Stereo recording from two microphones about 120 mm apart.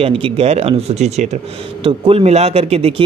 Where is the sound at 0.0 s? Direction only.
50° right (ahead or behind); by 1.4 s 65° right (ahead or behind).